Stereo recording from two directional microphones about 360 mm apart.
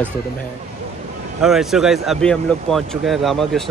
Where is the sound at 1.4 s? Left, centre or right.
Centre.